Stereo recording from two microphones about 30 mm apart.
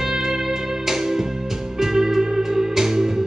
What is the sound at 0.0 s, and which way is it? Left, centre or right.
Music, centre.